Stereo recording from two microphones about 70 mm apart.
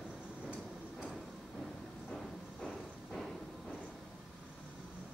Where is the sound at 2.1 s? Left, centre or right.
Centre.